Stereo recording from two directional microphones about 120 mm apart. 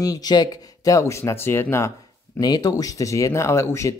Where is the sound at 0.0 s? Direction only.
30° left (ahead or behind).